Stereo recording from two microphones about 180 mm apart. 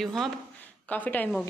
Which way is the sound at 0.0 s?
Centre (ahead or behind).